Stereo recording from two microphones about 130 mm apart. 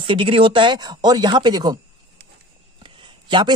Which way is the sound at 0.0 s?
45° right (ahead or behind).